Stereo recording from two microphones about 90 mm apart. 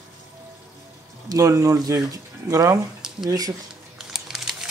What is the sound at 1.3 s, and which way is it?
Speech, 35° right (ahead or behind).